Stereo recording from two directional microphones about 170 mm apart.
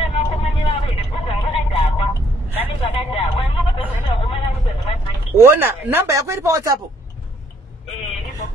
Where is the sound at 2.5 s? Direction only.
35° left (ahead or behind).